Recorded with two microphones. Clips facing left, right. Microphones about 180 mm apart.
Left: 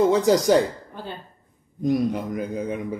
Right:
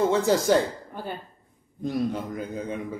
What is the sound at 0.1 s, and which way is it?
Speech, 15° left (ahead or behind).